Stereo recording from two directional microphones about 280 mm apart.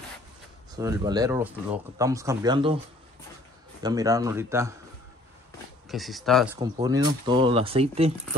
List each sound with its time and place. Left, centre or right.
0.7 s speech: centre
3.8 s speech: centre
5.9 s speech: centre
6.6 s speech: centre